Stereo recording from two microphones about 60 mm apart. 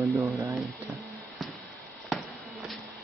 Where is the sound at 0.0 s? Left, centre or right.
Right.